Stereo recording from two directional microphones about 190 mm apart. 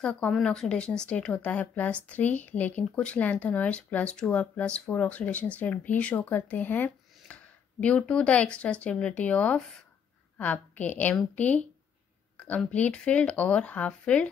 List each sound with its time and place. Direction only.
0.0 s speech: 5° left (ahead or behind)